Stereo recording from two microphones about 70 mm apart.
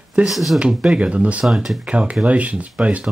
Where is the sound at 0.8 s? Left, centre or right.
Centre.